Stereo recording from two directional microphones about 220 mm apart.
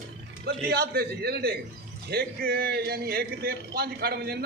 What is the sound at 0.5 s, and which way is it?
A man's voice, 45° right (ahead or behind).